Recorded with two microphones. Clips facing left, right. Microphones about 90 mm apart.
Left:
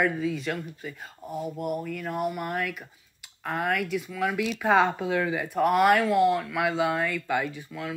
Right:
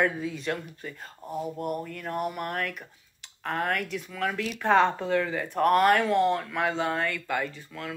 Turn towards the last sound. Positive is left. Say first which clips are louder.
# left 2 dB
turn(degrees=10)  # may be behind; listen again after turning